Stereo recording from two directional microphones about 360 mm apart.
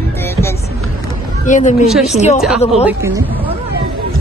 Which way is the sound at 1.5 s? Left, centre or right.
Centre.